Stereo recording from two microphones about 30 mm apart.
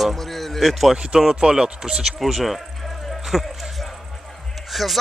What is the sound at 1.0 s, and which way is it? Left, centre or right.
Speech, right.